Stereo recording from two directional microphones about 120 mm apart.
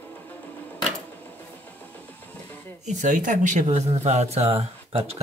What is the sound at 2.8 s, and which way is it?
Speech, 85° right.